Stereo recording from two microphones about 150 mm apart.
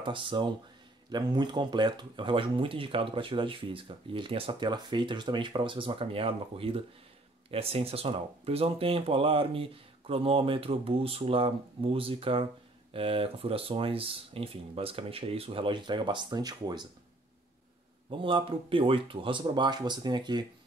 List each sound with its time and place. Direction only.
0.0 s speech: 35° right (ahead or behind)
18.1 s speech: 35° right (ahead or behind)